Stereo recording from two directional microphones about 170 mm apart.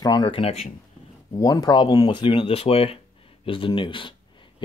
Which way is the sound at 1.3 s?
20° left (ahead or behind).